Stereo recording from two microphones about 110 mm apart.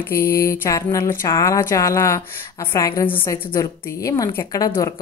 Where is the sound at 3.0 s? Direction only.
20° left (ahead or behind).